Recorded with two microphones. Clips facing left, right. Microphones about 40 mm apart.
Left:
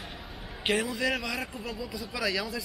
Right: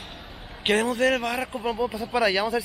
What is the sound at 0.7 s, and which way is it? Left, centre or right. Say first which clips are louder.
Speech: right 6 dB; right.